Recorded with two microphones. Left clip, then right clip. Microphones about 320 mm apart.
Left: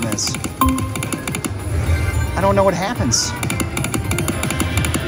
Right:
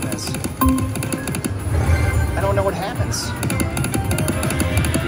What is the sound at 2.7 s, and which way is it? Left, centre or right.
Speech, left.